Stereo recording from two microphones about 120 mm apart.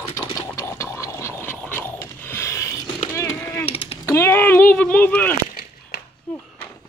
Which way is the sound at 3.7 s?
55° left (ahead or behind).